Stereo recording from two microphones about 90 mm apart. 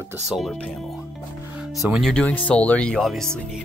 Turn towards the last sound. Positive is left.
turn(degrees=5)  # may be behind; listen again after turning